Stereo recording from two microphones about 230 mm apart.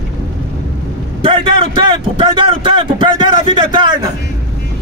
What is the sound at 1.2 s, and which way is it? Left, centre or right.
A man's voice, right.